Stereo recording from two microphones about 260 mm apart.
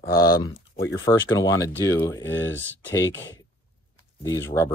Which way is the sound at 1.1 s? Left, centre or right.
Centre.